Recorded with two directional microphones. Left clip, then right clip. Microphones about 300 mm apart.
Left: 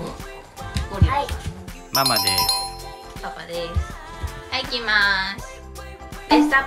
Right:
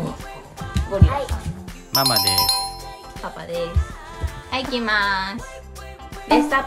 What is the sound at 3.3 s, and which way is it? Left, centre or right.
Music, right.